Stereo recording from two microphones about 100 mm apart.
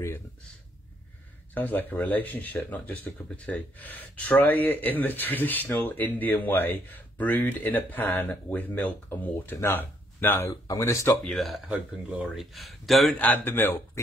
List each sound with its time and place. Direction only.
1.5 s speech: 20° left (ahead or behind)
10.5 s speech: 30° left (ahead or behind)
11.2 s speech: centre (ahead or behind)
13.2 s speech: 20° left (ahead or behind)